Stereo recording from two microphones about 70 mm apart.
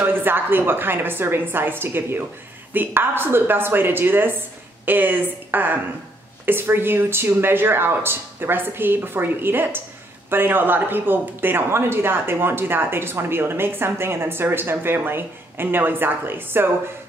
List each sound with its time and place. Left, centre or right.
0.0 s a woman's voice: right